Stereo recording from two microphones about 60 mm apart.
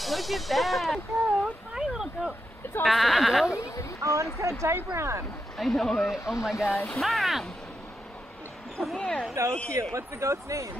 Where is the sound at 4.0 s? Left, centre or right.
Right.